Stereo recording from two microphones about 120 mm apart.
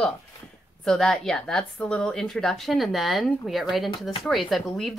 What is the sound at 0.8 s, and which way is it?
A woman's voice, 5° left (ahead or behind).